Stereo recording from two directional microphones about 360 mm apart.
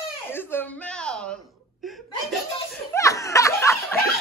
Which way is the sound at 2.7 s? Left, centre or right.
Centre.